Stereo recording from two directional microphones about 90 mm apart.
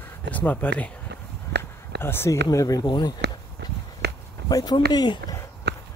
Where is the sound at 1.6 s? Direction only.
25° left (ahead or behind).